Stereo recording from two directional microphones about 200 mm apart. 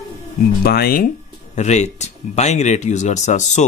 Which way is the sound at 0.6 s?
50° left (ahead or behind).